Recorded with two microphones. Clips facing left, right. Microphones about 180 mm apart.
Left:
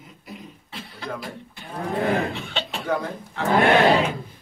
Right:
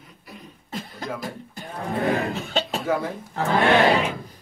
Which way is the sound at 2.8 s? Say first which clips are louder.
Left 1 dB; 5° right (ahead or behind).